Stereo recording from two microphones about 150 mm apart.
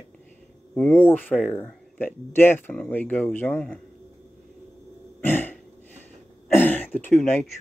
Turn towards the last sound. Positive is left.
turn(degrees=0)  # may be behind; listen again after turning